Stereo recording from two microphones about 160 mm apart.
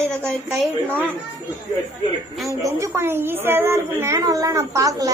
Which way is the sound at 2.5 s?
20° right (ahead or behind).